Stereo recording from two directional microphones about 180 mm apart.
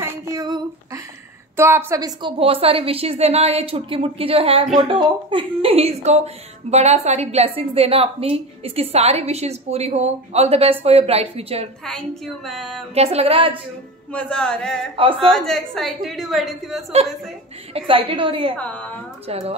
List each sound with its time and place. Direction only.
0.0 s a sound: 15° right (ahead or behind)
1.6 s a woman's voice: 15° right (ahead or behind); by 11.7 s 35° right (ahead or behind)
11.8 s a woman's voice: centre (ahead or behind)
12.9 s a woman's voice: 35° right (ahead or behind)
14.1 s a woman's voice: 5° left (ahead or behind)
17.7 s a woman's voice: 30° right (ahead or behind)
18.6 s speech: 10° left (ahead or behind)
19.2 s a woman's voice: 35° right (ahead or behind)